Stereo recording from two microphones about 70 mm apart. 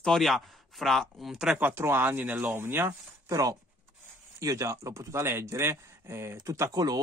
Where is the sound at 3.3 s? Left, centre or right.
Right.